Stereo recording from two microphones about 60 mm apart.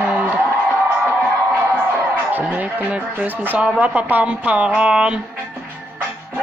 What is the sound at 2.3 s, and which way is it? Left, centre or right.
Speech, right.